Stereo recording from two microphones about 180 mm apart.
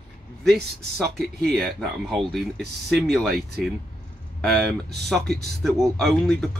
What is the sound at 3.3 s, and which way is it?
Speech, 60° right (ahead or behind).